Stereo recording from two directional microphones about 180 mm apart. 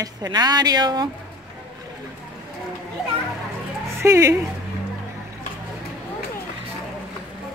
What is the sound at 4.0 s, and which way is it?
Speech, 15° right (ahead or behind).